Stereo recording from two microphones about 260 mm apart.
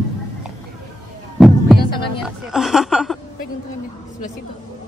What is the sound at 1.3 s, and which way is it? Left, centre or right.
Heart sounds, centre.